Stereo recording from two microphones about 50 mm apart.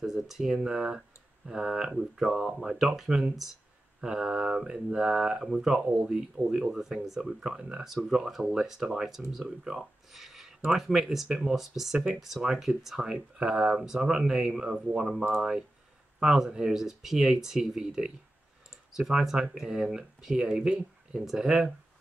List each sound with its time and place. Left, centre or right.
0.0 s speech: centre